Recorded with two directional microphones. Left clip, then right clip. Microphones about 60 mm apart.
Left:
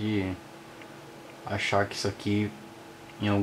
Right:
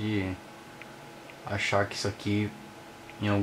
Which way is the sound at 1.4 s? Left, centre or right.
Centre.